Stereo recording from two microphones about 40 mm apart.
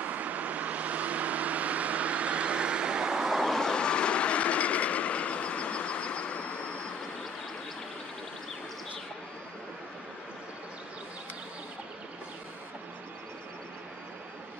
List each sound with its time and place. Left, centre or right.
0.0 s vehicle: right
3.4 s train: centre; by 6.7 s left